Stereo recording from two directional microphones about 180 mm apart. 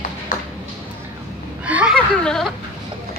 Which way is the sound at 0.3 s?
50° left (ahead or behind).